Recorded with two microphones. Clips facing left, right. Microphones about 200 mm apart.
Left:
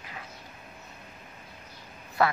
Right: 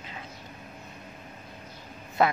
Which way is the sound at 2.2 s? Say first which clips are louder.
Right 2 dB; 20° right (ahead or behind).